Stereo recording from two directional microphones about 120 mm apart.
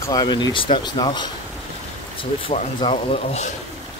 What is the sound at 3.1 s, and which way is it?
Speech, 65° left (ahead or behind).